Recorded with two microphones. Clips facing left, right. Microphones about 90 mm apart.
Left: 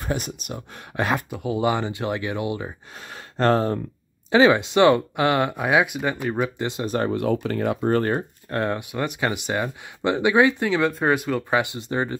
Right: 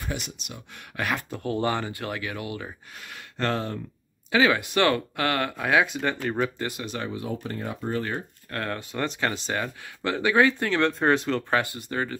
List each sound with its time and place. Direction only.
0.0 s speech: 45° left (ahead or behind)
0.9 s speech: 25° left (ahead or behind)
1.3 s speech: 10° left (ahead or behind)
3.1 s speech: 35° left (ahead or behind)
4.3 s speech: 25° left (ahead or behind)
6.9 s speech: 45° left (ahead or behind)
7.2 s speech: 85° left; by 8.0 s 70° left (ahead or behind)
8.2 s speech: 25° left (ahead or behind)
8.9 s speech: 10° left (ahead or behind)